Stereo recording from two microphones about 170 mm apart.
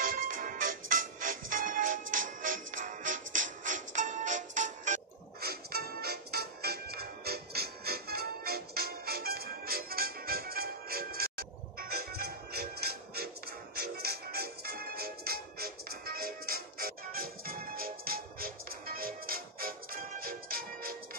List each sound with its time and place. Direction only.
0.0 s music: 55° right (ahead or behind)
5.4 s music: 65° right (ahead or behind)